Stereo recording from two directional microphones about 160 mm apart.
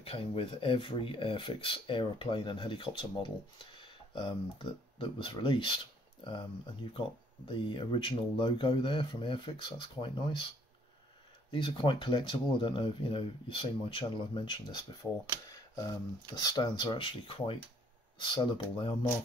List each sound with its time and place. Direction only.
0.0 s speech: 35° left (ahead or behind)
11.5 s speech: 30° left (ahead or behind)
16.3 s speech: 25° left (ahead or behind)